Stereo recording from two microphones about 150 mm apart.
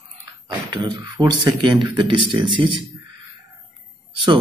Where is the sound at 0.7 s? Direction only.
30° right (ahead or behind).